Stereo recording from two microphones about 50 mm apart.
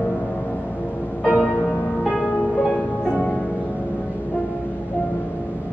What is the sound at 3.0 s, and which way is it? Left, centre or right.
Music, left.